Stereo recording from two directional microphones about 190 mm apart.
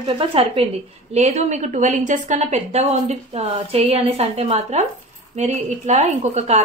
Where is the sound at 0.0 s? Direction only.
30° right (ahead or behind).